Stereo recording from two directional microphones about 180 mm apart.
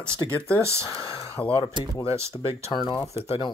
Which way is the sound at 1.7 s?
15° right (ahead or behind).